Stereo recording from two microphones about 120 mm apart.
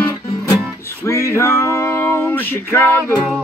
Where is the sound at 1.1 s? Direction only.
25° left (ahead or behind).